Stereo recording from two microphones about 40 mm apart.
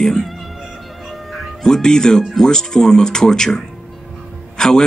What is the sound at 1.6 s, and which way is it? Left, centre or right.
Speech, centre.